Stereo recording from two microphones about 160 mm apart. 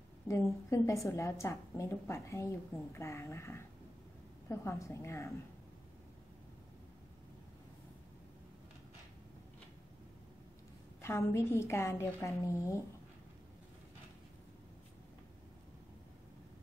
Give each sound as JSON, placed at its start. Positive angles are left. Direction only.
{"t": 0.3, "sound": "a woman's voice", "side_deg": 20}
{"t": 11.0, "sound": "a woman's voice", "side_deg": 15}